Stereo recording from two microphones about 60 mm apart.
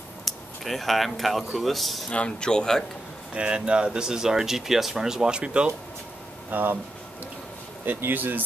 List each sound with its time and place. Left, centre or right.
0.2 s speech: centre
2.0 s speech: centre
3.3 s speech: centre
6.5 s speech: right
7.8 s speech: right